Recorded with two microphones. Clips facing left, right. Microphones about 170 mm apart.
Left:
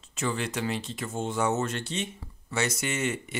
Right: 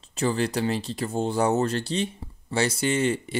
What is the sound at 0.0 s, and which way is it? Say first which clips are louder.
Speech: right 6 dB; 35° right (ahead or behind).